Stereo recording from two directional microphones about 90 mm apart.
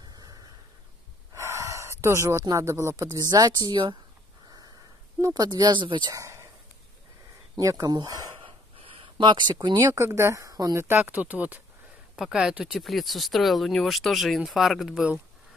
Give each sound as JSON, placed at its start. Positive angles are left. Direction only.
{"t": 0.1, "sound": "a sound", "side_deg": -45}
{"t": 1.3, "sound": "gasp", "side_deg": -35}
{"t": 2.4, "sound": "speech", "side_deg": -35}
{"t": 3.2, "sound": "speech", "side_deg": -50}
{"t": 5.2, "sound": "speech", "side_deg": -45}
{"t": 6.0, "sound": "dog", "side_deg": -35}
{"t": 7.5, "sound": "speech", "side_deg": -40}
{"t": 8.4, "sound": "a sound", "side_deg": -90}
{"t": 9.8, "sound": "speech", "side_deg": -40}
{"t": 10.0, "sound": "speech", "side_deg": -30}
{"t": 10.8, "sound": "speech", "side_deg": -25}
{"t": 12.2, "sound": "speech", "side_deg": -5}